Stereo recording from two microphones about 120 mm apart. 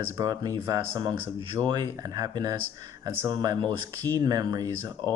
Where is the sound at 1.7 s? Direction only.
35° right (ahead or behind).